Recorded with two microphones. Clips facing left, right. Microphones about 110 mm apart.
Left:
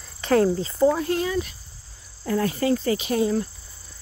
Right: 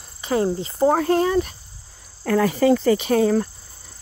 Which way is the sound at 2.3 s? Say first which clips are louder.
Right 5 dB; 90° right.